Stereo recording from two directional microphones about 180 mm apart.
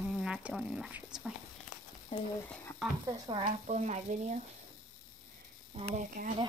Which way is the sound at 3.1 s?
30° right (ahead or behind).